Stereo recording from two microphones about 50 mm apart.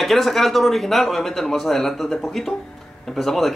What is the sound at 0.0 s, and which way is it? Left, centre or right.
Speech, centre.